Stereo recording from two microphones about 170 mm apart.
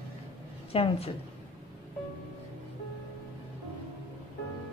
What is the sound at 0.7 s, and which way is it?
Speech, 35° left (ahead or behind).